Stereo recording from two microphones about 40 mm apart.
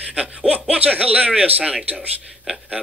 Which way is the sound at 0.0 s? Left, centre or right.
Right.